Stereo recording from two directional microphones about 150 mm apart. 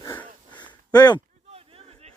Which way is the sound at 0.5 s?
30° left (ahead or behind).